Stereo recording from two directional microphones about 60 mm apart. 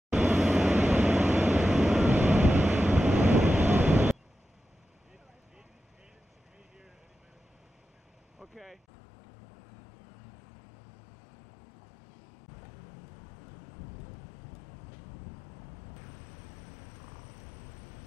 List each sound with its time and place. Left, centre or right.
0.1 s vehicle: centre
1.5 s vehicle: centre
2.0 s vehicle: right
8.4 s a sound: centre